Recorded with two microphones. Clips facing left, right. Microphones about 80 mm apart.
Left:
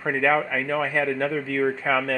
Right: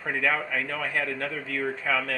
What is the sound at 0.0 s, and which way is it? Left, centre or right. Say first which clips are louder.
Speech: left 5 dB; left.